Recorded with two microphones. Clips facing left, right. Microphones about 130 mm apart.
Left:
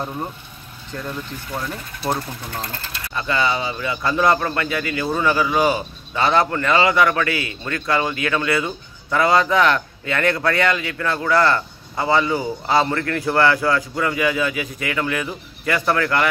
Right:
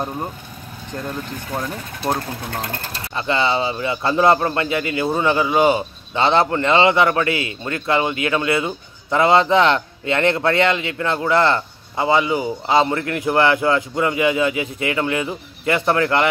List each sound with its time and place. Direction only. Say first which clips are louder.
2.1 s speech: right 2 dB; 60° right (ahead or behind)
3.2 s speech: right 2 dB; 25° right (ahead or behind)